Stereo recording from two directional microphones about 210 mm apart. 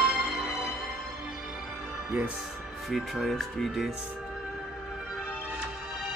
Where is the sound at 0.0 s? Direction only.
Centre (ahead or behind).